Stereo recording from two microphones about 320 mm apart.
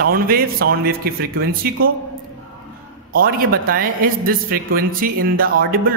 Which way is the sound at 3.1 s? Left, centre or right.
Right.